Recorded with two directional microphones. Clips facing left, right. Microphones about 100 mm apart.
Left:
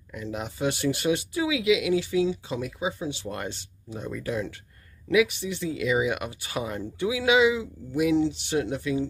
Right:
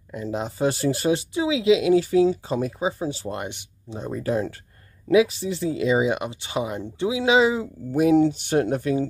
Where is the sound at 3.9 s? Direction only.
35° right (ahead or behind).